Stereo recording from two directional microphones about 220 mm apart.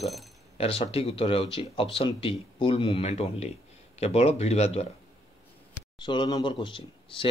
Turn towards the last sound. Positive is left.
turn(degrees=25)  # may be behind; listen again after turning